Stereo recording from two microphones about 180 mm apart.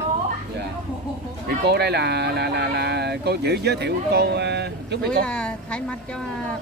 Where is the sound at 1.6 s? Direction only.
65° right (ahead or behind).